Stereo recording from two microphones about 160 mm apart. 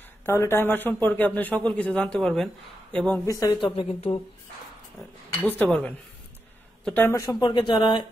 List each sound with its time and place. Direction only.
0.2 s speech: 15° left (ahead or behind)
3.3 s speech: 20° left (ahead or behind)
3.6 s speech: 35° left (ahead or behind)
5.3 s speech: 10° left (ahead or behind); by 8.1 s 30° left (ahead or behind)